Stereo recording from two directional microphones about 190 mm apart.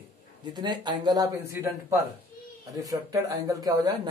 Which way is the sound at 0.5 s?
20° right (ahead or behind).